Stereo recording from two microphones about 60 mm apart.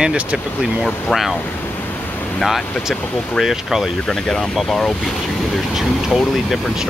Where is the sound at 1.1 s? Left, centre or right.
Centre.